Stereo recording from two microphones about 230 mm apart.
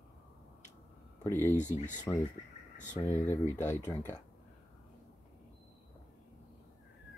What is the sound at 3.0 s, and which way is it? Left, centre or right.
Speech, centre.